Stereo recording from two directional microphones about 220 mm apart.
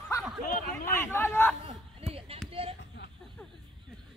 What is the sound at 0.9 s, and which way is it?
Speech, 10° left (ahead or behind).